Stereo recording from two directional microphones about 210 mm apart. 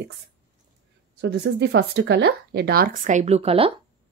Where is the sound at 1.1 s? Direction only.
50° right (ahead or behind); by 3.7 s 25° right (ahead or behind).